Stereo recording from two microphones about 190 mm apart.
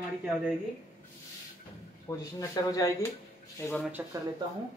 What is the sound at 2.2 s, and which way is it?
Speech, 20° left (ahead or behind).